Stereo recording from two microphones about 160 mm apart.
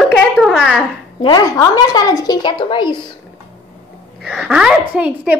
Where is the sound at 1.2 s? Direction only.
25° left (ahead or behind).